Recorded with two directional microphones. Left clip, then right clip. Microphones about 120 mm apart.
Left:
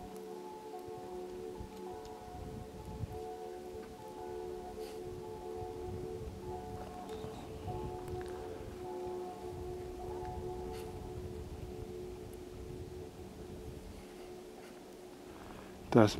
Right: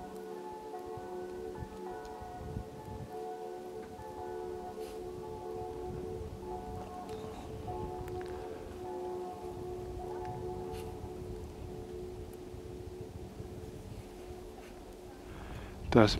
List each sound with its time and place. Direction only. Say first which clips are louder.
8.2 s music: right 2 dB; 15° right (ahead or behind)
15.9 s speech: right 2 dB; 10° right (ahead or behind)